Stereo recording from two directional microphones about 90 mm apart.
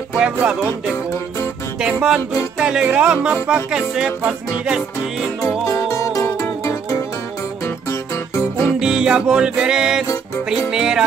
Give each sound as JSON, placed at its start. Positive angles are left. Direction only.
{"t": 0.2, "sound": "music", "side_deg": -10}
{"t": 1.8, "sound": "music", "side_deg": -10}
{"t": 6.1, "sound": "music", "side_deg": 35}
{"t": 8.6, "sound": "music", "side_deg": -5}